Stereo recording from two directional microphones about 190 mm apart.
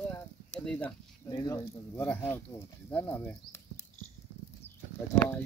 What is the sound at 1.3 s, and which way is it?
Speech, 20° left (ahead or behind).